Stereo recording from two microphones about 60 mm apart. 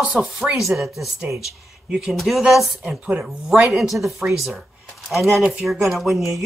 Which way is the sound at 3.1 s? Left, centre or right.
Centre.